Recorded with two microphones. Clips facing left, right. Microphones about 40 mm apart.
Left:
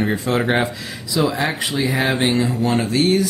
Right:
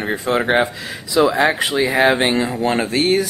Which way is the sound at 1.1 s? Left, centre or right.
Right.